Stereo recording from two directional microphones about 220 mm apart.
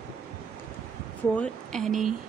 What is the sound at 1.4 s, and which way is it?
Speech, centre (ahead or behind).